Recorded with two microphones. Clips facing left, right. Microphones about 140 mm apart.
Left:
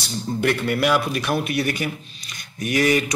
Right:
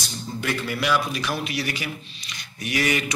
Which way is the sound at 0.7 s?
50° left (ahead or behind).